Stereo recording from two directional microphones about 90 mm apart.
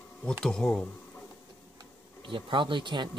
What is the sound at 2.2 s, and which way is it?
Speech, 70° right (ahead or behind).